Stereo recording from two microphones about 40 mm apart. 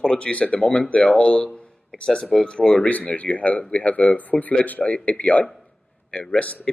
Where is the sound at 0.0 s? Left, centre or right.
Left.